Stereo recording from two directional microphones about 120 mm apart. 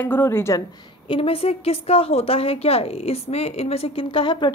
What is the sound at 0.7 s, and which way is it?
A woman's voice, 45° left (ahead or behind).